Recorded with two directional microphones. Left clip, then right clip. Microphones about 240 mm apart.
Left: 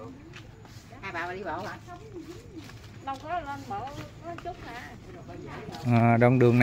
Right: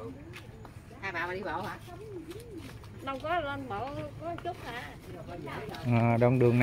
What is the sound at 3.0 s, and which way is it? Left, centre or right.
Speech, right.